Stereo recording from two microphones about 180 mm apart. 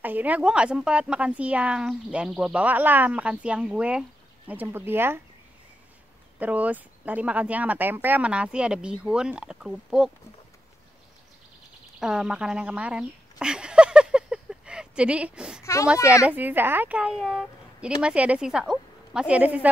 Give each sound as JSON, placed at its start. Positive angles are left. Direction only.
{"t": 0.0, "sound": "a woman's voice", "side_deg": -10}
{"t": 6.4, "sound": "a woman's voice", "side_deg": -10}
{"t": 12.0, "sound": "a sound", "side_deg": -5}
{"t": 15.6, "sound": "a child's voice", "side_deg": 15}
{"t": 16.3, "sound": "a woman's voice", "side_deg": -10}